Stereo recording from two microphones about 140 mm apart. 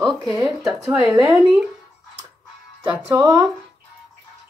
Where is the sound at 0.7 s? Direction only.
20° right (ahead or behind).